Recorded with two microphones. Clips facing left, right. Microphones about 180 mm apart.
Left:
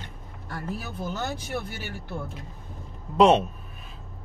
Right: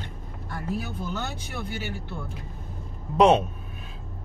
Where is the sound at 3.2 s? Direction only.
Centre (ahead or behind).